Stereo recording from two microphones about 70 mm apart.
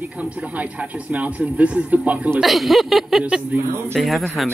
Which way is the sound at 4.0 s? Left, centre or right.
Centre.